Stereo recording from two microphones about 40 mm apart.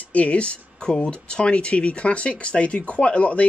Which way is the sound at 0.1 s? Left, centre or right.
Left.